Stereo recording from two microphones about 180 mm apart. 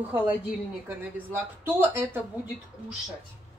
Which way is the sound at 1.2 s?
10° right (ahead or behind).